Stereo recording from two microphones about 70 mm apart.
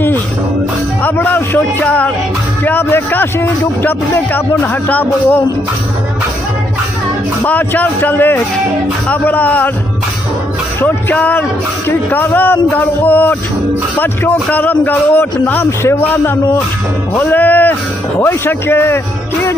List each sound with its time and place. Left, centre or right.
1.0 s speech: left
7.4 s speech: left
10.8 s speech: left
11.1 s speech: left
17.2 s speech: left